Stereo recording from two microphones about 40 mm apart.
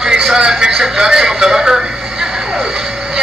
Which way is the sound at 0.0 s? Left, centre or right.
Centre.